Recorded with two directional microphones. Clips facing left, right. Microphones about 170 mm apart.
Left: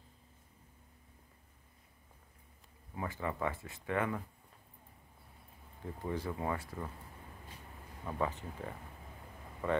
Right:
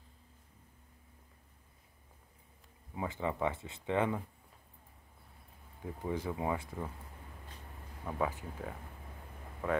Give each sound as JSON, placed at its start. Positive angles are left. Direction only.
{"t": 2.9, "sound": "speech", "side_deg": -15}
{"t": 5.8, "sound": "speech", "side_deg": -10}
{"t": 8.0, "sound": "speech", "side_deg": -5}